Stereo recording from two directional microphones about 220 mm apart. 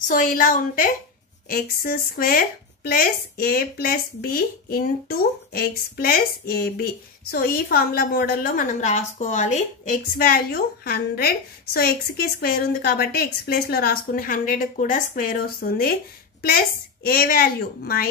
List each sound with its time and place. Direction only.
0.1 s a woman's voice: 40° left (ahead or behind)